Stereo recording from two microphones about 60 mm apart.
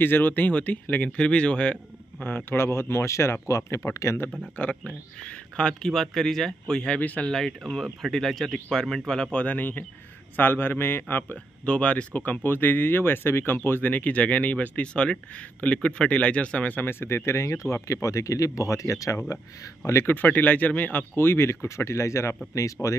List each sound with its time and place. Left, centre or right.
0.0 s speech: left
2.5 s speech: left
4.6 s speech: left
7.0 s speech: left
7.2 s speech: centre; by 11.3 s left
11.6 s speech: centre
16.8 s speech: left
20.1 s speech: left
21.2 s speech: left